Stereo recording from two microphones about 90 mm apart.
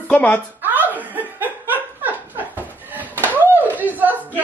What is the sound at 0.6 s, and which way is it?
Chuckle, 20° right (ahead or behind).